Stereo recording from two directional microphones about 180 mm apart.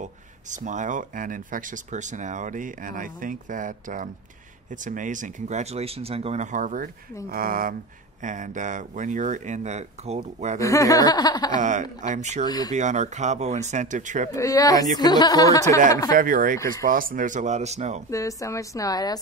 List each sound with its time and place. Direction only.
0.0 s speech: 45° right (ahead or behind)
10.6 s speech: 20° left (ahead or behind)
12.0 s speech: 40° right (ahead or behind)
12.4 s speech: 20° left (ahead or behind)
12.7 s speech: 40° right (ahead or behind)
14.3 s speech: 20° left (ahead or behind)
16.1 s speech: 50° right (ahead or behind)
18.1 s a woman's voice: 15° left (ahead or behind)